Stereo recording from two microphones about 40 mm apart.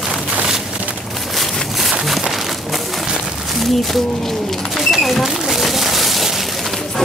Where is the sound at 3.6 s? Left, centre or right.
Centre.